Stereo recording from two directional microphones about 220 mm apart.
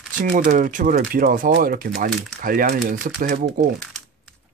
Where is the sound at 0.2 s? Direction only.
35° right (ahead or behind).